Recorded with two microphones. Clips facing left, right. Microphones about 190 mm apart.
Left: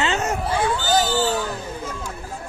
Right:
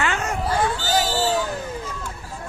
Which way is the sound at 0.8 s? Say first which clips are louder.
Left 2 dB; 45° left (ahead or behind).